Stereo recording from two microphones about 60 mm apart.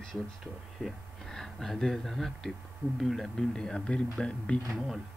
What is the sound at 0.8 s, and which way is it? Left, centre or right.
Speech, centre.